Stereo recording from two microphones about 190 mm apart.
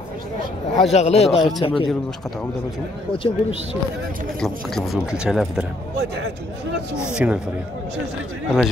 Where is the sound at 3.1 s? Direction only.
30° left (ahead or behind).